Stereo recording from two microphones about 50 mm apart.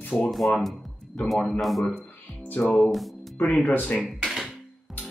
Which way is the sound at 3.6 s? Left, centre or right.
Left.